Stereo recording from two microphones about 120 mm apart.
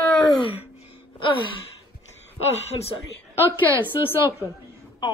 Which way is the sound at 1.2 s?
45° left (ahead or behind).